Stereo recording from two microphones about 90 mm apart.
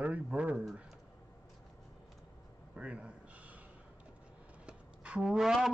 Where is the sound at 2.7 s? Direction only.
15° right (ahead or behind).